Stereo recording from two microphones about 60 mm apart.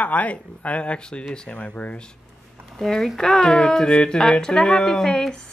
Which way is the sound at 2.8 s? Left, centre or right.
Centre.